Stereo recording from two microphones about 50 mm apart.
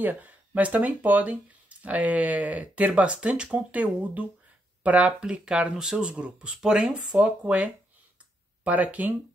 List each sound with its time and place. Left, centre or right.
0.0 s speech: right; by 3.5 s centre
3.5 s speech: right